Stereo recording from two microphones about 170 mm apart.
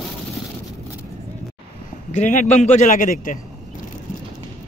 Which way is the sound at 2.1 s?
45° left (ahead or behind).